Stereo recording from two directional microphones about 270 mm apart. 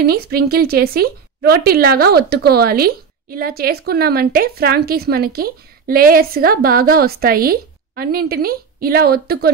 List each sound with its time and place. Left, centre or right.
0.0 s speech: right